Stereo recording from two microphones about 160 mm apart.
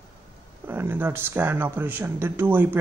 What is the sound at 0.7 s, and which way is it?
Speech, 15° right (ahead or behind).